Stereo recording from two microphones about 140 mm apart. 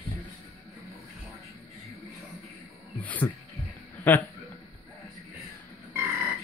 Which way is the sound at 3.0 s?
10° left (ahead or behind).